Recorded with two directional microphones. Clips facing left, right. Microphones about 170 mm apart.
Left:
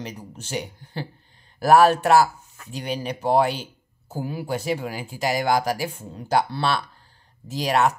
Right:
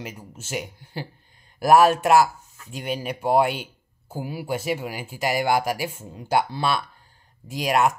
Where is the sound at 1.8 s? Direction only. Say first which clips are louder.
Even; 35° left (ahead or behind).